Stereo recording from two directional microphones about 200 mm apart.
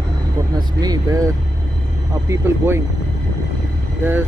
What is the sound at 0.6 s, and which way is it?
Speech, 20° right (ahead or behind).